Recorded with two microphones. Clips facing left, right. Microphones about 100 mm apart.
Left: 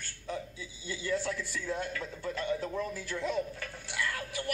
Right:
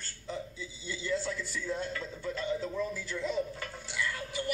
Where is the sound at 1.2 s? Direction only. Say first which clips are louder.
Left 1 dB; 55° left (ahead or behind).